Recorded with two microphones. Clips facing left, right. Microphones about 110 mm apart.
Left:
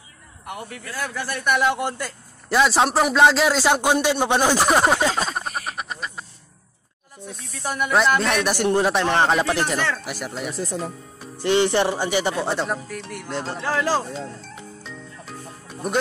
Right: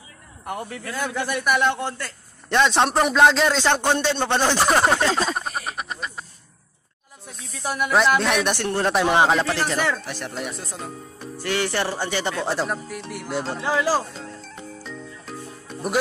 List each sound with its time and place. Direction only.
0.5 s a man's voice: 30° right (ahead or behind)
1.4 s snake: centre (ahead or behind)
1.8 s a man's voice: 15° left (ahead or behind)
7.2 s snake: centre (ahead or behind)
8.5 s speech: 15° left (ahead or behind)
8.9 s speech: 10° right (ahead or behind)
9.3 s speech: 10° left (ahead or behind)
9.9 s snake: 5° left (ahead or behind)
11.4 s speech: 20° left (ahead or behind)
12.5 s snake: centre (ahead or behind)
13.7 s speech: 10° right (ahead or behind)
14.4 s music: centre (ahead or behind)